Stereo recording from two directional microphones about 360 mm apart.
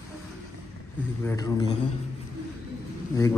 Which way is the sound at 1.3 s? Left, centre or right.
Centre.